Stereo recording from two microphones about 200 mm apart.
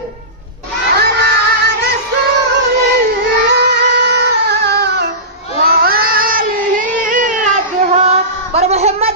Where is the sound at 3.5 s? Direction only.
55° right (ahead or behind).